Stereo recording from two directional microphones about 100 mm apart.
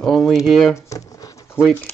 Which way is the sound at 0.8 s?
35° left (ahead or behind).